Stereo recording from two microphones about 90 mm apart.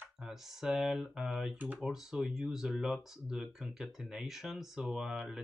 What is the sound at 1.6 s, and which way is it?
Speech, 20° right (ahead or behind).